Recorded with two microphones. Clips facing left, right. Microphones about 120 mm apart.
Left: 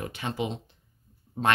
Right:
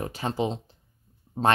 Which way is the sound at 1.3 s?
20° right (ahead or behind).